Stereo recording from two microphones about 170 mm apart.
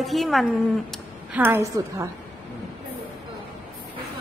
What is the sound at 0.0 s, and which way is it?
Speech, centre (ahead or behind).